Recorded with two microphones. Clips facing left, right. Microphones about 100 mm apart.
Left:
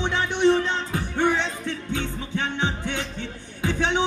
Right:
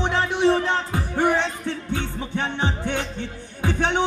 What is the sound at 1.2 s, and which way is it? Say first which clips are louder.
Music: right 2 dB; 15° right (ahead or behind).